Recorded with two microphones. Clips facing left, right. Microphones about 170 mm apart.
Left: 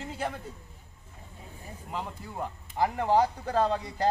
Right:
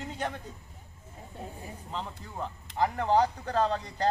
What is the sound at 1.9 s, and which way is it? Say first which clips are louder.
Speech: left 2 dB; 10° left (ahead or behind).